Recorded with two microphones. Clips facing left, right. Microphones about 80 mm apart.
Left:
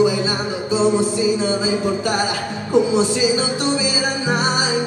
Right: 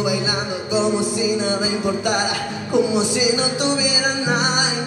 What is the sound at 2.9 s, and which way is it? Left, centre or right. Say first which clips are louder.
Speech: left 2 dB; left.